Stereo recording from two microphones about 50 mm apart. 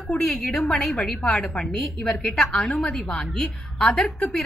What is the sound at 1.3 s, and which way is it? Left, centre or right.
A woman's voice, centre.